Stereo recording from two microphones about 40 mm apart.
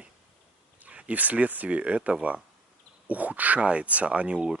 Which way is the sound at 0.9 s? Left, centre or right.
Right.